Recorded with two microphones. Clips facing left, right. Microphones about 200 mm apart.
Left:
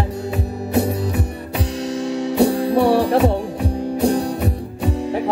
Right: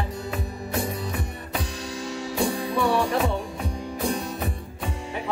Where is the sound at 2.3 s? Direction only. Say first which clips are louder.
Left 9 dB; 65° left (ahead or behind).